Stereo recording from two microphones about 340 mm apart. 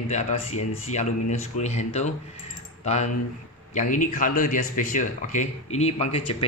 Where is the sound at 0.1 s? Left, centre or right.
Centre.